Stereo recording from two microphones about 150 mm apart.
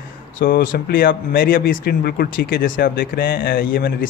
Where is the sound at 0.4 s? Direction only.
70° left (ahead or behind).